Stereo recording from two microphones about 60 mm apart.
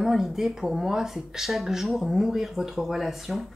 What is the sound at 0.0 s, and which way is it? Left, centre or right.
Speech, centre.